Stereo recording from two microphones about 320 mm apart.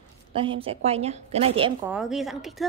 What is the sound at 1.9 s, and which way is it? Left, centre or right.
Speech, centre.